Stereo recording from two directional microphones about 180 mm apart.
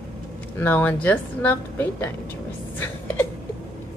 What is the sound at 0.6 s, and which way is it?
A woman's voice, 10° left (ahead or behind).